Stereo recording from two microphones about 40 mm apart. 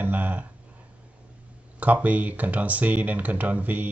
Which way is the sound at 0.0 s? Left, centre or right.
Right.